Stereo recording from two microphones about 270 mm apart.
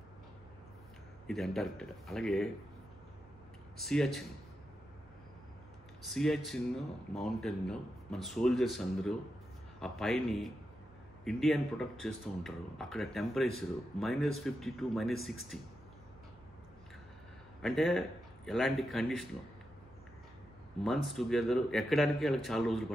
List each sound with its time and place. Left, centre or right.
1.2 s speech: centre
3.7 s speech: centre
6.0 s speech: centre
17.6 s a man's voice: centre
20.8 s speech: centre